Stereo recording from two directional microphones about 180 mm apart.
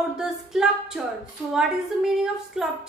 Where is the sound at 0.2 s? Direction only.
5° right (ahead or behind).